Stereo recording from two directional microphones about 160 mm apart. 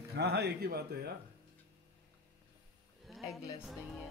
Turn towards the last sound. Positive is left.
turn(degrees=0)  # may be behind; listen again after turning